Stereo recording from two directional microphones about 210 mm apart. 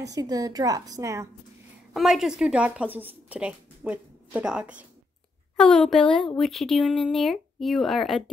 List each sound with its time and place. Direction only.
0.1 s a woman's voice: 15° right (ahead or behind)
2.0 s a woman's voice: centre (ahead or behind)